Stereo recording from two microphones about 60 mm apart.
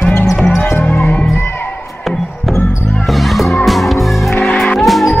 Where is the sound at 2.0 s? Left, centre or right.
Centre.